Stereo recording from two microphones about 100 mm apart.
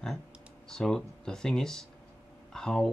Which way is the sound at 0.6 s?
5° left (ahead or behind).